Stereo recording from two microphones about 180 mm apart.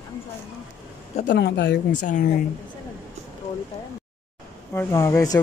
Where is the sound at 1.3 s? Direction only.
75° left (ahead or behind).